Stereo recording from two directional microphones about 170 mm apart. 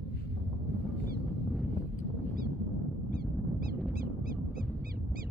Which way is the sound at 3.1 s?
60° right (ahead or behind).